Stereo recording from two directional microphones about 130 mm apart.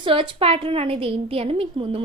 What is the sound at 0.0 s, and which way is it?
A woman's voice, 45° right (ahead or behind).